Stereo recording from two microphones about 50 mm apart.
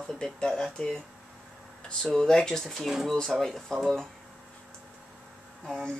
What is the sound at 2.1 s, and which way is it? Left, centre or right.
Speech, centre.